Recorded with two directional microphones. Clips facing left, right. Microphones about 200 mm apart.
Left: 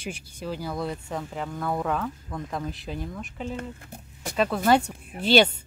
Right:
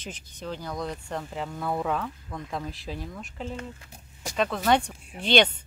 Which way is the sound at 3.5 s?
55° left (ahead or behind).